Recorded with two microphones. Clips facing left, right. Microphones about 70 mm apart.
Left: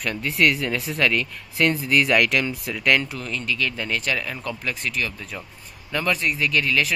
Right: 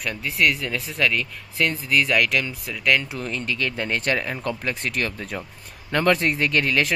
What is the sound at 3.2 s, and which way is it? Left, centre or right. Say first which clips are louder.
Speech: even; right.